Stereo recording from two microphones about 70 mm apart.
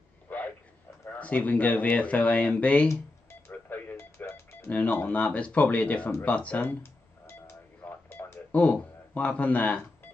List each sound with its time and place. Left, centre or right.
0.3 s a sound: left
1.1 s speech: left
3.4 s a sound: left
4.2 s music: left
4.6 s speech: left
6.2 s telephone dialing: centre